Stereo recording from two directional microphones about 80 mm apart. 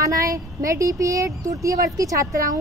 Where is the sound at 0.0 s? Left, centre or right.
Right.